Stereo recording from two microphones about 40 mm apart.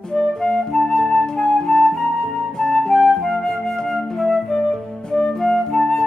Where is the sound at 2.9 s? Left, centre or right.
Centre.